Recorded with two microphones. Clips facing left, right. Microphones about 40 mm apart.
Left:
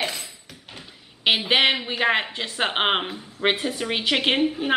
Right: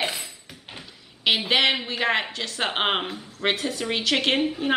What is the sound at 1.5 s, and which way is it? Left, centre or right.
A woman's voice, centre.